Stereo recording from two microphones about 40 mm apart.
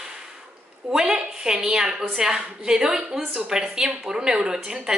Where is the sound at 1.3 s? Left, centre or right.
Centre.